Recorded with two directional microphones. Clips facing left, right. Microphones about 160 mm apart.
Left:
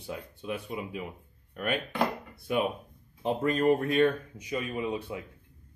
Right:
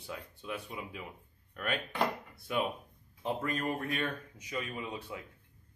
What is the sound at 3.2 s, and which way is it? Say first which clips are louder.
Speech: left 7 dB; 25° left (ahead or behind).